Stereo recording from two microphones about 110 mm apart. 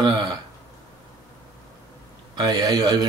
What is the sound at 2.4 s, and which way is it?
Speech, 35° right (ahead or behind).